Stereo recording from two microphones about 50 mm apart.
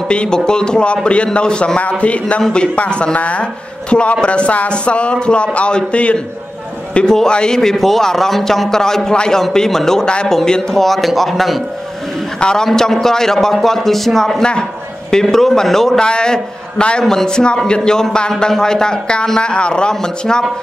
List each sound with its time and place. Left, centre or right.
0.1 s a man's voice: centre
6.9 s a sound: left
7.2 s a man's voice: centre
12.4 s a man's voice: centre